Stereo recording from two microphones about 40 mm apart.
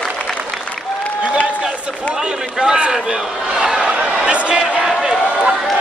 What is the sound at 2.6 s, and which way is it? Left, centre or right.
A man's voice, right.